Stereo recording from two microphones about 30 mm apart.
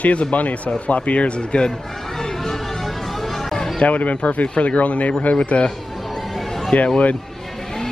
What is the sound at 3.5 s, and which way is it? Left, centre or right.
Music, centre.